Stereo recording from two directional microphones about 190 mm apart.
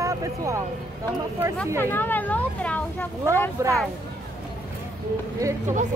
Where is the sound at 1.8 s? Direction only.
10° left (ahead or behind).